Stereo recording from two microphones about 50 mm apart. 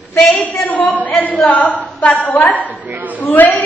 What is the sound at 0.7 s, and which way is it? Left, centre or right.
A woman's voice, left.